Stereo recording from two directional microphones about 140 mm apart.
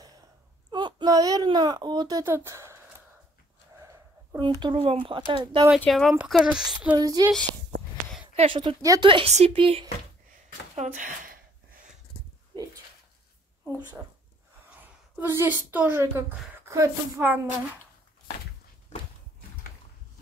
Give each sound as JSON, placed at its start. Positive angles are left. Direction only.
{"t": 0.7, "sound": "speech", "side_deg": -30}
{"t": 4.4, "sound": "speech", "side_deg": -35}
{"t": 5.9, "sound": "speech", "side_deg": 5}
{"t": 7.0, "sound": "speech", "side_deg": -25}
{"t": 8.4, "sound": "speech", "side_deg": -35}
{"t": 9.3, "sound": "speech", "side_deg": -45}
{"t": 10.8, "sound": "speech", "side_deg": -70}
{"t": 14.8, "sound": "speech", "side_deg": -15}